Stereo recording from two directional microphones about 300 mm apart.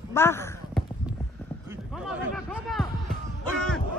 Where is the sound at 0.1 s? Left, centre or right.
Centre.